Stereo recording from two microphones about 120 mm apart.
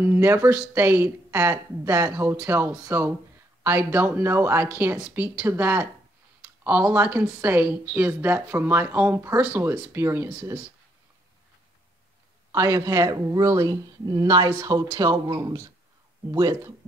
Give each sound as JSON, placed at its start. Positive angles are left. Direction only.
{"t": 0.0, "sound": "speech", "side_deg": -20}
{"t": 9.7, "sound": "speech", "side_deg": -20}
{"t": 12.5, "sound": "speech", "side_deg": -25}